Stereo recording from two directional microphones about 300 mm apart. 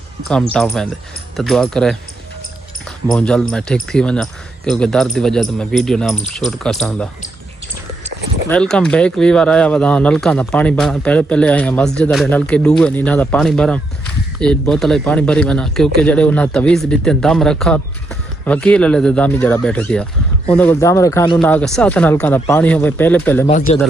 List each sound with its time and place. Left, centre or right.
0.3 s speech: centre
3.1 s speech: centre
8.5 s speech: centre
23.4 s speech: left